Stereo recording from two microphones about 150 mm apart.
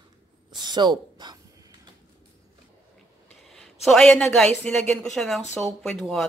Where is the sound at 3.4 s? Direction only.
Centre (ahead or behind).